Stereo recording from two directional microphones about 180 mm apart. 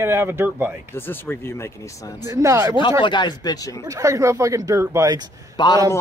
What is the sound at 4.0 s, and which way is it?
Speech, 15° right (ahead or behind).